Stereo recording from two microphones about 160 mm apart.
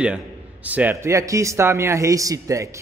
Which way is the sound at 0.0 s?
10° right (ahead or behind).